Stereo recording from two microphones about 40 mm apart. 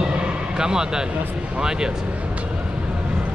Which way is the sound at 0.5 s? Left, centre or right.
Centre.